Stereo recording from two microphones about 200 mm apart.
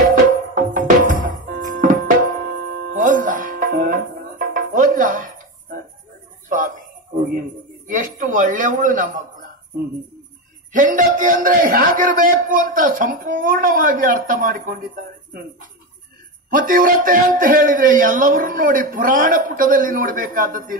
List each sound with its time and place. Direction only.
0.1 s music: 40° right (ahead or behind)
6.5 s a sound: 40° right (ahead or behind)
10.7 s speech: 40° right (ahead or behind)
16.5 s speech: 40° right (ahead or behind)